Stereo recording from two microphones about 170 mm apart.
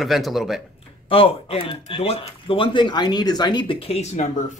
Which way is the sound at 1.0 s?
35° left (ahead or behind).